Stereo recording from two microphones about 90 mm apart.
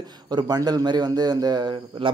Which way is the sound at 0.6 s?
45° right (ahead or behind).